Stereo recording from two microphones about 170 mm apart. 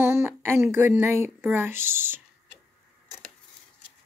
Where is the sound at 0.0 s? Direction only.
10° right (ahead or behind).